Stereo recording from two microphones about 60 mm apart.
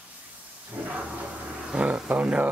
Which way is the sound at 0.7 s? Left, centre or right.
Right.